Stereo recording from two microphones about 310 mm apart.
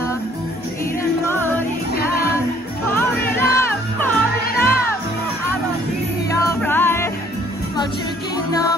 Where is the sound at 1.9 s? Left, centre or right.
Left.